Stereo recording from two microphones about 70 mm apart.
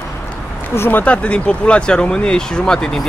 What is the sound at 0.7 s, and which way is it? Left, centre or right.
Speech, left.